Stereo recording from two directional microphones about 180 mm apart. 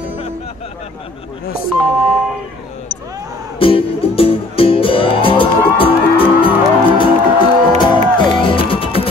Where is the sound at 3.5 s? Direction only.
30° left (ahead or behind).